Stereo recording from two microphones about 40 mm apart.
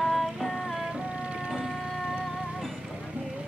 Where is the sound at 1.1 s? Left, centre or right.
Right.